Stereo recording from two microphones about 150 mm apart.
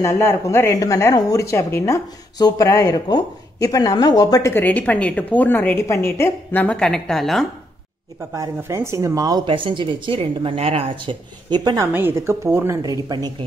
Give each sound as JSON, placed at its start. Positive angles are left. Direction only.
{"t": 0.0, "sound": "a woman's voice", "side_deg": 20}
{"t": 8.3, "sound": "speech", "side_deg": -20}
{"t": 11.8, "sound": "a woman's voice", "side_deg": -15}